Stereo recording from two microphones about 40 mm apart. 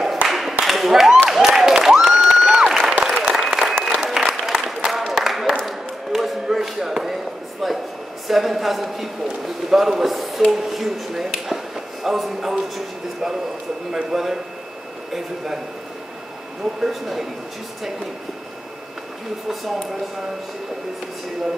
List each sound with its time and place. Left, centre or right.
0.3 s a sound: centre
1.9 s crowd: centre
2.6 s applause: centre
5.1 s a sound: centre
5.7 s basketball bounce: centre
7.6 s a sound: centre
8.3 s a woman's voice: centre
13.9 s a man's voice: centre
16.8 s speech: centre